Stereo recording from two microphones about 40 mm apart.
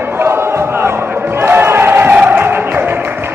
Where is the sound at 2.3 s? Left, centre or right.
Right.